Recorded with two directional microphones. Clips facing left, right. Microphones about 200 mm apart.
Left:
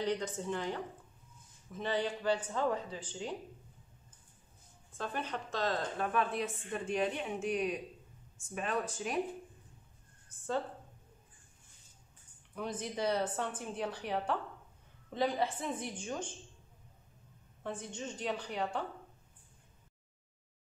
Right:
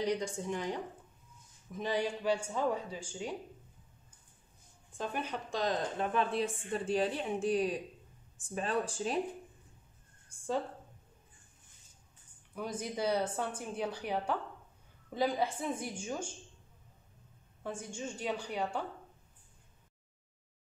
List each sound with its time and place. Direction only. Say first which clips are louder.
0.0 s a woman's voice: right 1 dB; 10° right (ahead or behind)
4.9 s a woman's voice: right 1 dB; 15° right (ahead or behind); by 9.2 s 30° right (ahead or behind)
10.3 s speech: right 1 dB; 10° right (ahead or behind)
12.5 s a woman's voice: right 1 dB; 10° right (ahead or behind)
17.6 s a woman's voice: right 1 dB; 10° right (ahead or behind)